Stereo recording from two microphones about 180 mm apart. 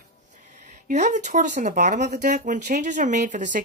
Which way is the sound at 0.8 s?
40° right (ahead or behind).